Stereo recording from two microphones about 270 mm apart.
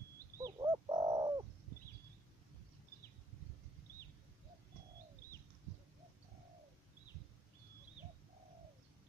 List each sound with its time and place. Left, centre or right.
0.4 s bird: centre